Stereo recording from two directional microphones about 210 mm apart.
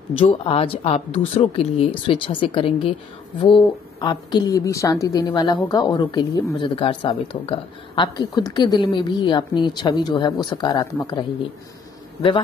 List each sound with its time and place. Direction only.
0.2 s a woman's voice: 25° left (ahead or behind)